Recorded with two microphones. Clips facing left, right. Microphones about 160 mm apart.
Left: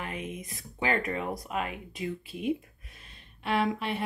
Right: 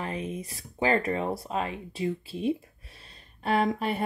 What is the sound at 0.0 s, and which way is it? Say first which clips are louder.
Speech: right 4 dB; 35° right (ahead or behind).